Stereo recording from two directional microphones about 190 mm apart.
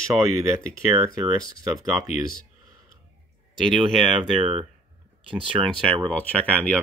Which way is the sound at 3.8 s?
30° right (ahead or behind).